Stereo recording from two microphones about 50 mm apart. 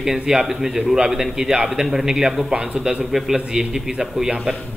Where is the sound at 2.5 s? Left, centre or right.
Centre.